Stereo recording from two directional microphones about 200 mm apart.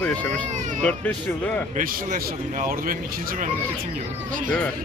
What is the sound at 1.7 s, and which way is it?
A man's voice, 40° right (ahead or behind).